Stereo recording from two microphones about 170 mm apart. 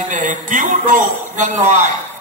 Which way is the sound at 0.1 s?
50° right (ahead or behind).